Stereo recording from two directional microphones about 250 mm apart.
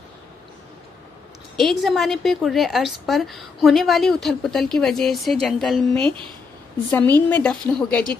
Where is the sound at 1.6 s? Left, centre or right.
Centre.